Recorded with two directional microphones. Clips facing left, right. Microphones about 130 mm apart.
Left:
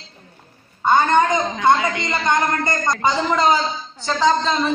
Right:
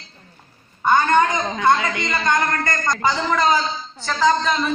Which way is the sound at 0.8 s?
20° left (ahead or behind).